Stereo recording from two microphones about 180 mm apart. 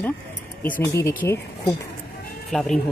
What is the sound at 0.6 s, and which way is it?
Speech, 10° left (ahead or behind).